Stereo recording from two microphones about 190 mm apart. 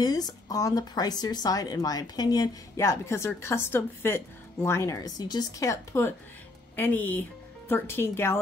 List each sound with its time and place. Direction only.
0.0 s speech: 20° left (ahead or behind)